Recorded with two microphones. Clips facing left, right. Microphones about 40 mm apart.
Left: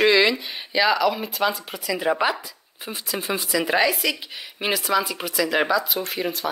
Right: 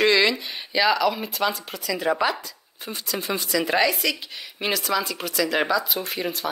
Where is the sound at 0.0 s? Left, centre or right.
Centre.